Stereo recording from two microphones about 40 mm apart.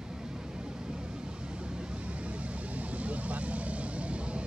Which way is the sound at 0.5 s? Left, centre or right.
Centre.